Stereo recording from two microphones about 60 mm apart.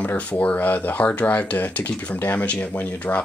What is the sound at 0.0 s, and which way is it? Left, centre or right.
Speech, left.